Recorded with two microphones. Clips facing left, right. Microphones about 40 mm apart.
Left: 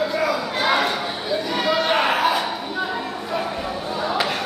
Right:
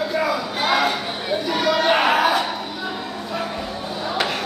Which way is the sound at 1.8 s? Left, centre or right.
Right.